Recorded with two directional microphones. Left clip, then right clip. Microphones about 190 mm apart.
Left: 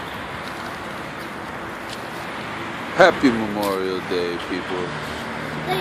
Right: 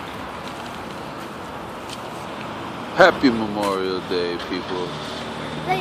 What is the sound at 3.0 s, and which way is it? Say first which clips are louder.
Speech: even; centre (ahead or behind).